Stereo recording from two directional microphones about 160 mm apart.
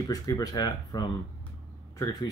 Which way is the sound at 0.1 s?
20° left (ahead or behind).